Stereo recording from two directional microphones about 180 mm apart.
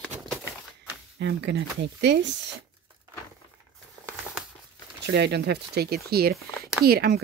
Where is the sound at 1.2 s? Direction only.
75° right (ahead or behind).